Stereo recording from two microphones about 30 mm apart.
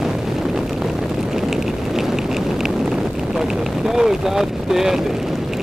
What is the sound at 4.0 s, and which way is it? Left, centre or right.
Speech, centre.